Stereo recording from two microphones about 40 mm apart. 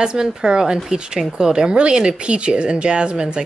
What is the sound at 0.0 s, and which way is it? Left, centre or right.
Speech, centre.